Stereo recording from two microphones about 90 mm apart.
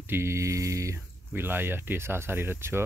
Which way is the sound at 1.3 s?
25° right (ahead or behind).